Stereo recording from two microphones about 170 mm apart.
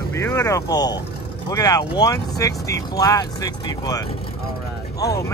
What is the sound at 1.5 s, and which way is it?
Speech, 20° left (ahead or behind).